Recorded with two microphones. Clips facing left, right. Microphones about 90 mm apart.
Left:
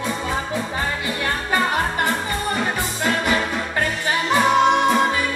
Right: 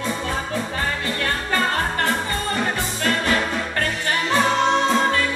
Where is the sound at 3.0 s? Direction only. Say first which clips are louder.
Even; 15° left (ahead or behind).